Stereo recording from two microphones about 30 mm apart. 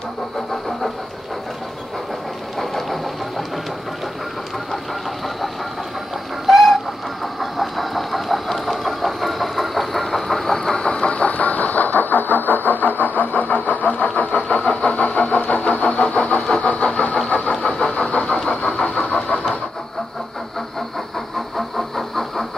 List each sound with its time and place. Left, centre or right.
2.6 s engine: centre
6.4 s chicken: centre
7.3 s engine: centre
10.8 s vehicle: left
11.3 s vehicle: left
14.7 s vehicle: left
15.1 s vehicle: left
16.0 s vehicle: left
16.6 s vehicle: left
17.7 s vehicle: centre
18.1 s vehicle: left
21.5 s train: centre